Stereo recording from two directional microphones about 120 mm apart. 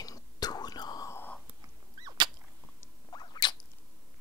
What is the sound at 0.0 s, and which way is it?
Whispering, 30° left (ahead or behind).